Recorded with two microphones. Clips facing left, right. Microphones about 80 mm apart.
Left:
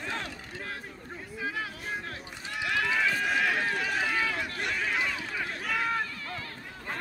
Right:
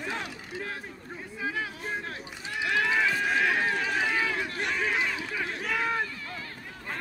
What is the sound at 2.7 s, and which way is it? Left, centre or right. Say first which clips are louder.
Run: right 2 dB; right.